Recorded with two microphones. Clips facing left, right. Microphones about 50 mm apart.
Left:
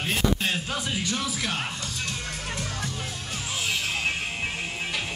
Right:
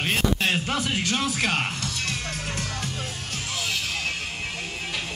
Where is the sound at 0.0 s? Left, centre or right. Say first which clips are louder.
Right 2 dB; right.